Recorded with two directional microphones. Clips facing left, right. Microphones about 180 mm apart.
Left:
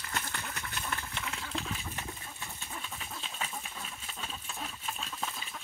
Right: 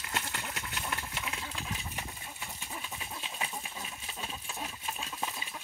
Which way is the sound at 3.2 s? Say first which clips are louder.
Right 1 dB; 10° right (ahead or behind).